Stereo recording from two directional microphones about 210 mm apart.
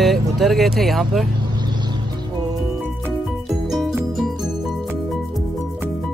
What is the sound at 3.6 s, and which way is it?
Music, centre (ahead or behind).